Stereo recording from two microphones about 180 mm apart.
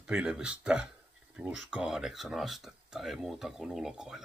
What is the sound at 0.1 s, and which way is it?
Speech, 5° right (ahead or behind).